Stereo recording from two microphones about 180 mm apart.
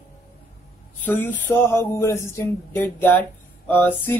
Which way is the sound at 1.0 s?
10° left (ahead or behind).